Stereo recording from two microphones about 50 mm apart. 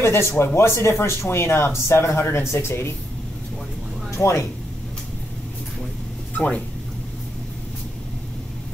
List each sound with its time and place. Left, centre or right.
0.0 s speech: left
4.1 s speech: left
6.3 s speech: left